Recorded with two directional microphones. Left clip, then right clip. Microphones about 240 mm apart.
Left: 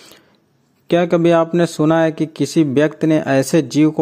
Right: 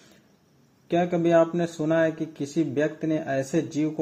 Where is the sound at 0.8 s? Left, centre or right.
Left.